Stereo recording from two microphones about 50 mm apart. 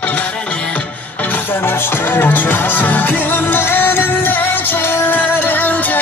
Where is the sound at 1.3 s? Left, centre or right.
Left.